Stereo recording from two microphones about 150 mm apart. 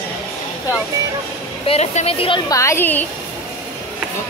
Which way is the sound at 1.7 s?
45° left (ahead or behind).